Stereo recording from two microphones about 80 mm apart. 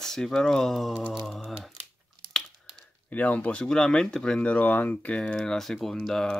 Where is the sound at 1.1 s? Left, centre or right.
Centre.